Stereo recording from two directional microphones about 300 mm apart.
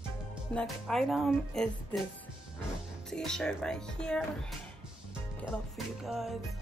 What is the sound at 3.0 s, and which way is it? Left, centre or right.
Speech, centre.